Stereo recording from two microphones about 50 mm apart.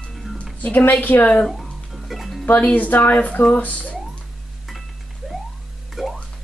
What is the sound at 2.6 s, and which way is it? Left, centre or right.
Speech, left.